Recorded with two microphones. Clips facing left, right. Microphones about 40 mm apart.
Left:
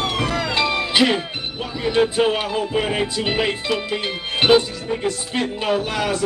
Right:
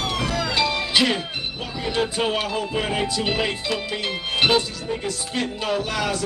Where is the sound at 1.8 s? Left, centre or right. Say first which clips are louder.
Left 6 dB; centre.